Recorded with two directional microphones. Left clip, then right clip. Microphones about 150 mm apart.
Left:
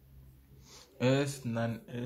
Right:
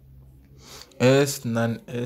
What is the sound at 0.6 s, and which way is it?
Speech, 35° right (ahead or behind).